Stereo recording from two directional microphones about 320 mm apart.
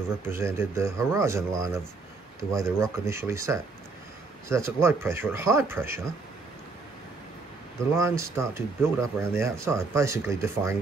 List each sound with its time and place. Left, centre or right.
0.2 s speech: centre
8.2 s speech: centre